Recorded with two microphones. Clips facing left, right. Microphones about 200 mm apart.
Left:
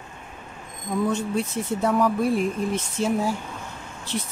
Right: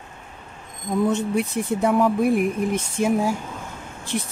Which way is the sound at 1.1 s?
15° right (ahead or behind).